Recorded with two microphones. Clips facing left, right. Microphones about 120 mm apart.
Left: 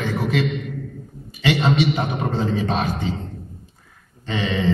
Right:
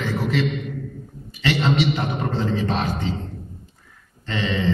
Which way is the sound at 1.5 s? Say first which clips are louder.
Left 2 dB; 15° left (ahead or behind).